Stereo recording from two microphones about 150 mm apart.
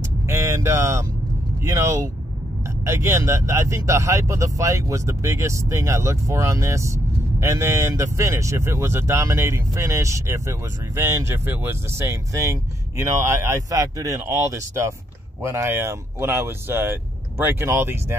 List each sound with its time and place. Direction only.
0.3 s speech: 20° right (ahead or behind)